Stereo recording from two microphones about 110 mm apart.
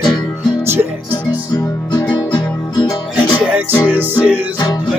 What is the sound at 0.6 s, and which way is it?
Music, 20° right (ahead or behind).